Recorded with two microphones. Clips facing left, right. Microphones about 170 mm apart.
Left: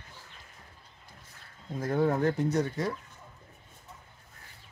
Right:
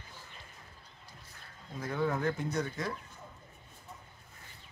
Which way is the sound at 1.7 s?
45° left (ahead or behind).